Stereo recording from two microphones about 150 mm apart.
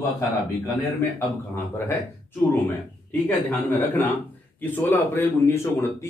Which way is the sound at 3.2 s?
10° left (ahead or behind).